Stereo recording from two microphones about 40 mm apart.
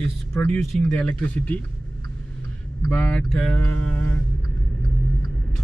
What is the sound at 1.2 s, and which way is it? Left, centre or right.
Speech, left.